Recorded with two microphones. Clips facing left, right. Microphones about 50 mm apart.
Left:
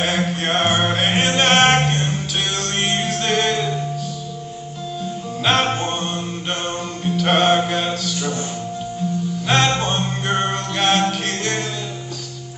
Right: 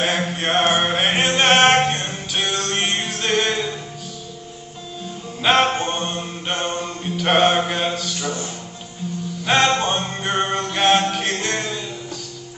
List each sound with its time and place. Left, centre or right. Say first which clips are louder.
0.0 s mantra: left 1 dB; centre
5.4 s music: right 2 dB; centre
5.8 s mantra: even; centre
9.5 s music: right 1 dB; centre